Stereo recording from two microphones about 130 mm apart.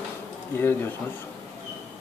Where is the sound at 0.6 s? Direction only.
15° left (ahead or behind).